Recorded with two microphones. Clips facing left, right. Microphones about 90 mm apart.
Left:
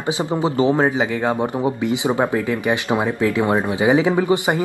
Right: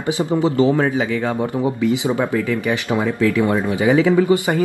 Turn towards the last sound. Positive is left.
turn(degrees=20)  # may be behind; listen again after turning